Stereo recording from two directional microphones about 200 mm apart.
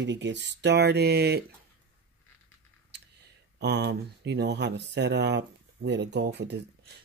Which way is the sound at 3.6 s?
60° right (ahead or behind).